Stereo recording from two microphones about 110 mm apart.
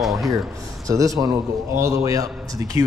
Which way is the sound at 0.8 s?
30° right (ahead or behind).